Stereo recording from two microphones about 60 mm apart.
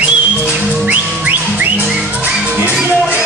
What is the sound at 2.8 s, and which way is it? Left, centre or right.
Music, right.